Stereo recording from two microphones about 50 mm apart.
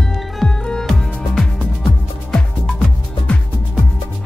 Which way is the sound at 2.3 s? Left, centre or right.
Centre.